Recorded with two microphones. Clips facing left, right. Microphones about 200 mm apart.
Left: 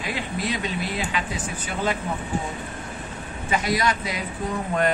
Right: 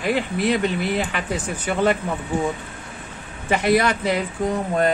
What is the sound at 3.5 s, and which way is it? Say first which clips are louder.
Speech: right 5 dB; 60° right (ahead or behind).